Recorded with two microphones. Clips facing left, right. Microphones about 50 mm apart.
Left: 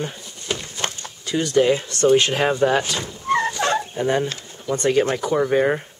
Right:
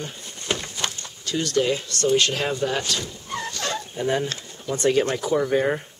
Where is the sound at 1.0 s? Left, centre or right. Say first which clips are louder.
Left 3 dB; centre.